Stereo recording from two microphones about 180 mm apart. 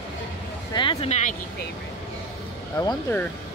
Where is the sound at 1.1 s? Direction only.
45° left (ahead or behind).